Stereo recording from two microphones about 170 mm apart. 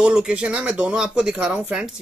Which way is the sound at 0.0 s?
5° right (ahead or behind).